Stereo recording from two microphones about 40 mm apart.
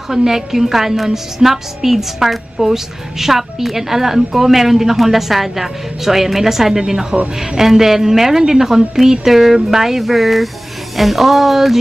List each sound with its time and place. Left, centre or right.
0.1 s a woman's voice: centre